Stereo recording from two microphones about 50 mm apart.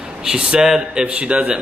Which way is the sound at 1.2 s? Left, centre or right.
Right.